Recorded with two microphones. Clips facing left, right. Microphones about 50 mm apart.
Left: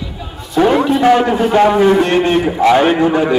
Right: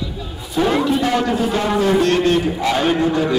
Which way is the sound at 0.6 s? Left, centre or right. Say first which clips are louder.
Left 6 dB; left.